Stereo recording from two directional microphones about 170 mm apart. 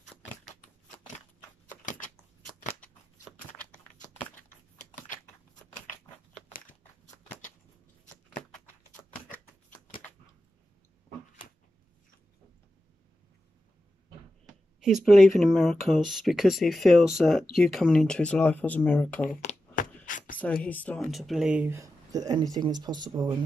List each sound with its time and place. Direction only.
2.8 s scissors: 10° left (ahead or behind)
4.9 s scissors: 50° left (ahead or behind)
8.0 s a sound: 45° left (ahead or behind)
14.8 s speech: centre (ahead or behind)
19.2 s a sound: 50° left (ahead or behind)
20.6 s speech: 10° left (ahead or behind)
21.7 s speech: 20° right (ahead or behind)